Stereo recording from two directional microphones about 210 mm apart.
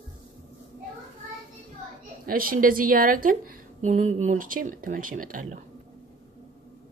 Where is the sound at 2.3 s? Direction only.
40° right (ahead or behind).